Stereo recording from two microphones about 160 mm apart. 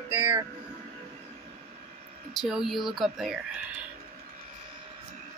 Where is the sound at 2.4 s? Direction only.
5° right (ahead or behind).